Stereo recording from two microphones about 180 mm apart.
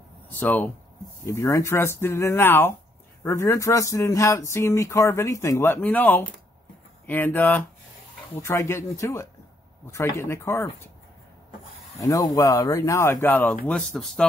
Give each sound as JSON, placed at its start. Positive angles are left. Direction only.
{"t": 0.3, "sound": "speech", "side_deg": 10}
{"t": 12.0, "sound": "speech", "side_deg": 20}